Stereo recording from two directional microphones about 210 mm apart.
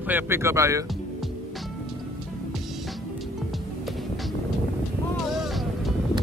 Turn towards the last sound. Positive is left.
turn(degrees=0)  # may be behind; listen again after turning